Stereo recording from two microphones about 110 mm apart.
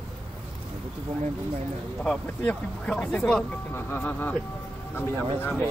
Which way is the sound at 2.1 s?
5° left (ahead or behind).